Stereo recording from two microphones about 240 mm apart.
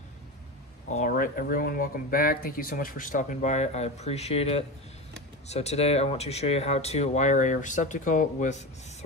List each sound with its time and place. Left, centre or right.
0.8 s speech: left